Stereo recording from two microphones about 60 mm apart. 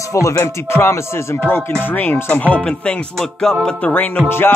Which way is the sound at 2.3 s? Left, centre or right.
Left.